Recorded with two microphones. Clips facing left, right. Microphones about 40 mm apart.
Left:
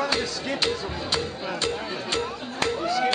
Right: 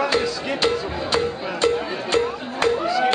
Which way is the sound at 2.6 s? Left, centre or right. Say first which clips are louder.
Right 5 dB; right.